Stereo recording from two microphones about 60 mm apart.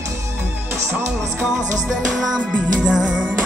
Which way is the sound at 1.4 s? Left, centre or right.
Centre.